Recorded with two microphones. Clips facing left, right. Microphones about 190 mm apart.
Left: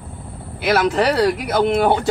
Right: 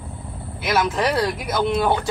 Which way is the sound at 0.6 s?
65° left (ahead or behind).